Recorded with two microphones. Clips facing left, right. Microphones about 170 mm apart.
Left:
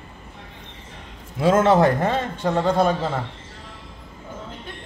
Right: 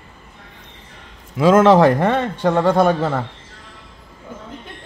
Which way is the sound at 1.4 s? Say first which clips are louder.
Right 5 dB; 90° right.